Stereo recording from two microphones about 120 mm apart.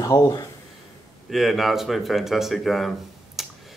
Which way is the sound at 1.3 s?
Centre (ahead or behind).